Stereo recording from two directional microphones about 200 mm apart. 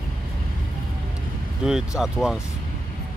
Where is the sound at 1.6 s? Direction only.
5° right (ahead or behind).